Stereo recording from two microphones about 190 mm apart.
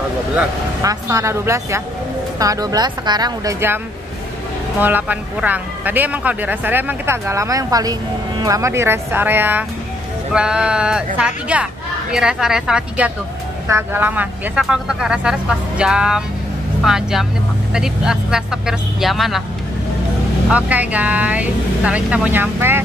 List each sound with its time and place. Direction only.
0.8 s a woman's voice: 15° right (ahead or behind); by 19.4 s centre (ahead or behind)
20.5 s speech: 5° right (ahead or behind)